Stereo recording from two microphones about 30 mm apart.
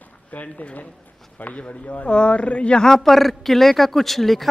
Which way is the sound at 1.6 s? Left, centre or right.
Left.